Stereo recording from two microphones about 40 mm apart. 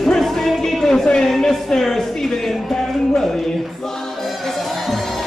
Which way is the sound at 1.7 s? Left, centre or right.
Centre.